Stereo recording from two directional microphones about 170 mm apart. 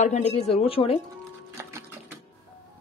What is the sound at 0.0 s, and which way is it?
Speech, 40° left (ahead or behind).